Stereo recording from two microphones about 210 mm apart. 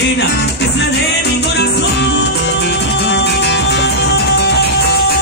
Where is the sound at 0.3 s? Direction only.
55° left (ahead or behind).